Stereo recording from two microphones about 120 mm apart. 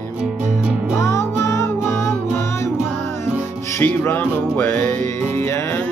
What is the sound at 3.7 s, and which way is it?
Music, 15° left (ahead or behind).